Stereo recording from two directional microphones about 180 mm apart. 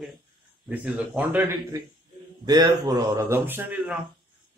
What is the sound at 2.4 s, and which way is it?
A man's voice, 20° right (ahead or behind).